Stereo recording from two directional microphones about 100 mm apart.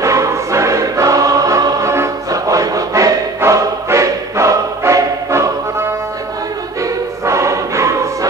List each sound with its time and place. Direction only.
0.0 s choir: 30° right (ahead or behind)
7.2 s choir: 30° right (ahead or behind)